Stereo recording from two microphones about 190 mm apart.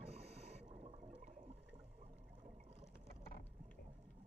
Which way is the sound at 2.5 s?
35° right (ahead or behind).